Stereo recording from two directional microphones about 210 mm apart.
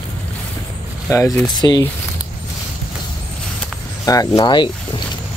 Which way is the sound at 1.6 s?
20° left (ahead or behind).